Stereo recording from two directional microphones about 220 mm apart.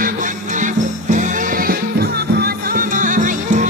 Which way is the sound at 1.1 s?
40° right (ahead or behind).